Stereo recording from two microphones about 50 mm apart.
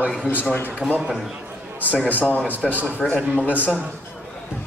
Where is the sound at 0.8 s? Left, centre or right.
Centre.